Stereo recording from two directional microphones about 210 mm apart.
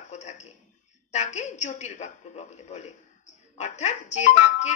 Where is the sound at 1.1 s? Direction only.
35° left (ahead or behind).